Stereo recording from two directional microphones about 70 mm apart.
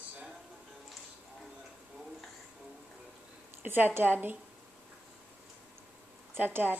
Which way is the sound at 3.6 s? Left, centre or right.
Right.